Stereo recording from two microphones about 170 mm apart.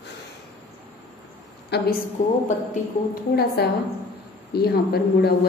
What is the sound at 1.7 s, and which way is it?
Speech, 75° left (ahead or behind).